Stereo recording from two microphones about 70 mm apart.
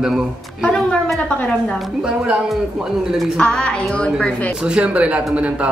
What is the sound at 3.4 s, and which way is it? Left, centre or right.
A woman's voice, centre.